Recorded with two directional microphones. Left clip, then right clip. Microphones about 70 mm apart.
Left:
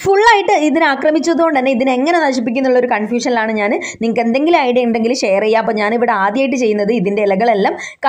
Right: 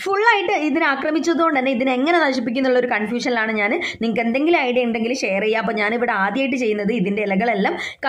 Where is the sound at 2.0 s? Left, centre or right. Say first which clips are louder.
Left 4 dB; left.